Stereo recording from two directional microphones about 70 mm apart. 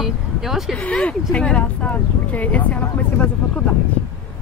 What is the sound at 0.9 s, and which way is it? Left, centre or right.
Speech, centre.